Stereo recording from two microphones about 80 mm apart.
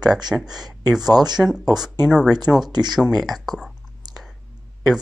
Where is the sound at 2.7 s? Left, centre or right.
Right.